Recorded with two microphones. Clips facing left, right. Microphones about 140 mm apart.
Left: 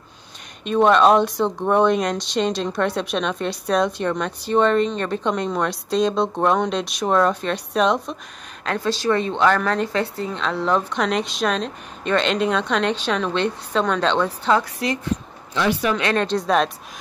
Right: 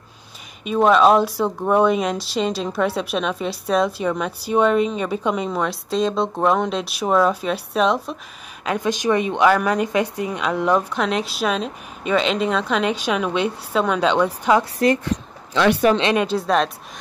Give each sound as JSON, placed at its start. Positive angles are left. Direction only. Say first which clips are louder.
{"t": 0.7, "sound": "speech", "louder": "even", "side_deg": 0}
{"t": 8.6, "sound": "a woman's voice", "louder": "right 1 dB", "side_deg": -15}
{"t": 15.0, "sound": "a sound", "louder": "right 1 dB", "side_deg": -90}
{"t": 15.9, "sound": "a woman's voice", "louder": "right 4 dB", "side_deg": -20}
{"t": 16.2, "sound": "speech", "louder": "even", "side_deg": -5}